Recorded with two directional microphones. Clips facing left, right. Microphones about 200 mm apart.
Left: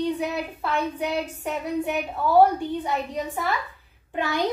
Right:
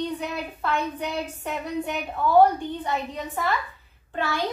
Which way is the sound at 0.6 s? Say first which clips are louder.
Right 1 dB; 10° left (ahead or behind).